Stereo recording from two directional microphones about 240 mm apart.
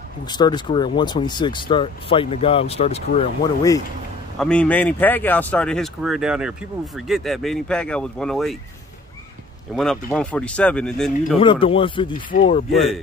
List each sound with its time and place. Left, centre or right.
0.3 s speech: centre
4.4 s speech: centre
9.8 s speech: centre
11.3 s speech: left
12.7 s speech: centre